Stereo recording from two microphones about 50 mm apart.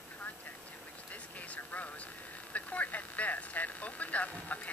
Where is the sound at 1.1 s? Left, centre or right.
Left.